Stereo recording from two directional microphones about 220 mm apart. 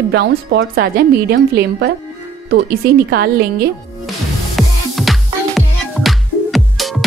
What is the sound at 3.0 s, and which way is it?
Speech, 45° right (ahead or behind).